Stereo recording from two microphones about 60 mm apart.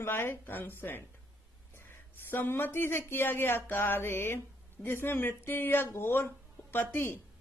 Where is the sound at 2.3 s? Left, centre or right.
Left.